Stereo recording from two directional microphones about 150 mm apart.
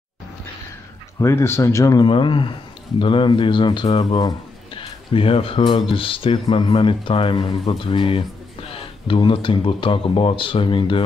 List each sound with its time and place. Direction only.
1.2 s speech: 15° left (ahead or behind)
2.0 s speech: 35° left (ahead or behind)